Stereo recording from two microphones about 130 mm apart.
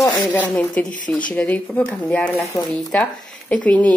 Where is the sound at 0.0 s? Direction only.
25° left (ahead or behind).